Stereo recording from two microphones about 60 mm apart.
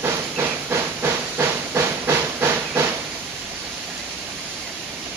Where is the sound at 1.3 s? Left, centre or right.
Right.